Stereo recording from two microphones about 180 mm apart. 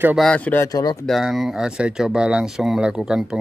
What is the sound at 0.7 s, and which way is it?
Speech, 20° left (ahead or behind).